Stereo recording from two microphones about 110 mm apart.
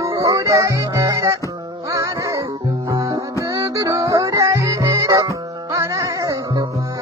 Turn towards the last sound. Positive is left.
turn(degrees=-30)  # may be behind; listen again after turning